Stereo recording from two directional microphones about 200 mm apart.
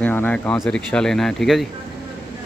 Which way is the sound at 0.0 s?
10° left (ahead or behind).